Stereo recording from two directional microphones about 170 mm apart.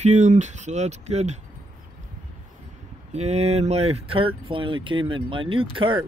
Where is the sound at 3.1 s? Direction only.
40° right (ahead or behind).